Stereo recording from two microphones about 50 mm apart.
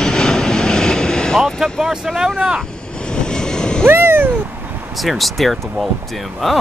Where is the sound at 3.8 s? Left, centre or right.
Right.